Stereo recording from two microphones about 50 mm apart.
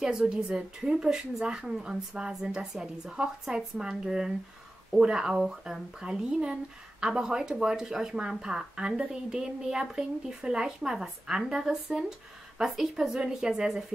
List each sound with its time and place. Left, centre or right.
0.0 s a woman's voice: centre